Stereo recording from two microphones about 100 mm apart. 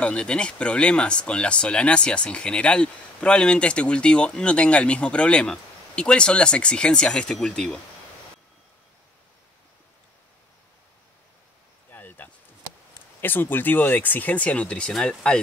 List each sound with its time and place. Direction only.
0.0 s speech: 10° left (ahead or behind)
11.9 s a sound: 20° left (ahead or behind)
13.2 s speech: 20° left (ahead or behind)